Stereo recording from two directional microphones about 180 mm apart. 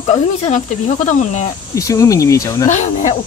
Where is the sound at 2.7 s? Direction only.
40° left (ahead or behind).